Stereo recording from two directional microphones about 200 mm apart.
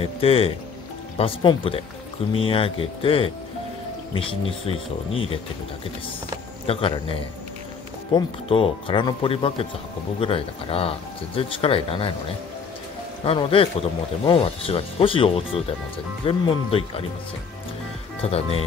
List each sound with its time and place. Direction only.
0.0 s speech: 25° left (ahead or behind)
6.7 s speech: 25° left (ahead or behind)
13.2 s speech: 25° left (ahead or behind)
18.2 s speech: 30° left (ahead or behind)